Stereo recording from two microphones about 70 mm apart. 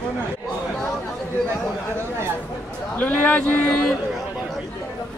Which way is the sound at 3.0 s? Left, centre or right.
Centre.